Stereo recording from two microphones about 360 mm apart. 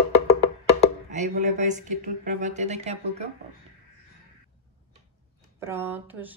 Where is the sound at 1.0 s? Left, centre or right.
Centre.